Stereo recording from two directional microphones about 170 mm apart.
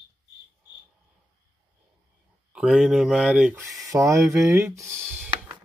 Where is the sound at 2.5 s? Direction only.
5° right (ahead or behind).